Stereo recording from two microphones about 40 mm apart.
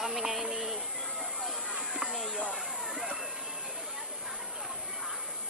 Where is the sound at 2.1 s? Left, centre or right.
Centre.